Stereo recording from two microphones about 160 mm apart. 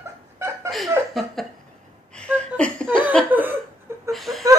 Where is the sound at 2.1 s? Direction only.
5° left (ahead or behind).